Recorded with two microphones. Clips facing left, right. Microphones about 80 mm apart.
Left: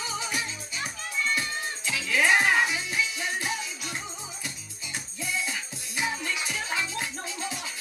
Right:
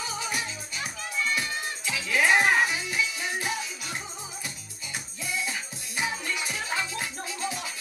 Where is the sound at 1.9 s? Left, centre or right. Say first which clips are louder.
Even; right.